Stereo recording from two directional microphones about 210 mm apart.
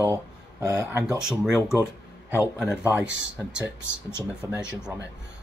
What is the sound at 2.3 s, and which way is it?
Speech, 5° right (ahead or behind).